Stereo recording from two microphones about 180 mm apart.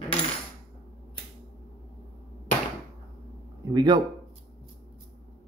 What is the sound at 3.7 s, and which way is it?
Speech, 25° right (ahead or behind).